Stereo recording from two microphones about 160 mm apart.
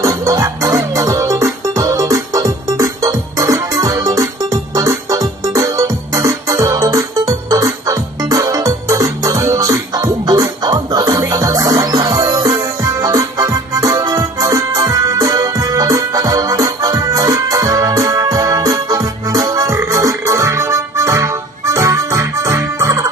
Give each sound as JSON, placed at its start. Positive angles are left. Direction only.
{"t": 0.0, "sound": "music", "side_deg": -20}